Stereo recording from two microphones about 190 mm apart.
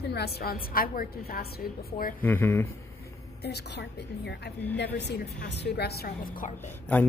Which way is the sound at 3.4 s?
60° left (ahead or behind).